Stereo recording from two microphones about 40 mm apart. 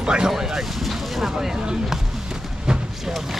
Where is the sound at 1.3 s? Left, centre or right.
Centre.